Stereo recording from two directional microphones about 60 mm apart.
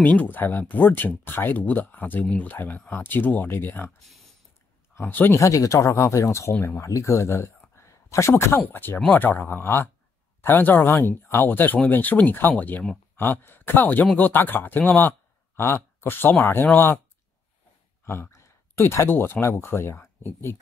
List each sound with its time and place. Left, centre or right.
0.0 s speech: left
5.0 s speech: left
5.3 s speech: left
7.7 s a sound: left
8.5 s speech: left
18.0 s a sound: left
18.8 s speech: left